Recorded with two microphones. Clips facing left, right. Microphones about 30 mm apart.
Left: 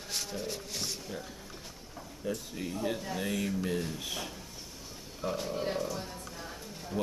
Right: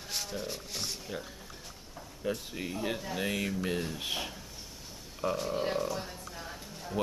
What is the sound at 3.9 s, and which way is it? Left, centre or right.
Speech, right.